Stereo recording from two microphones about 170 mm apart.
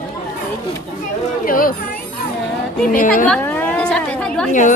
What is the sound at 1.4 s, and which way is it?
Speech, 55° left (ahead or behind).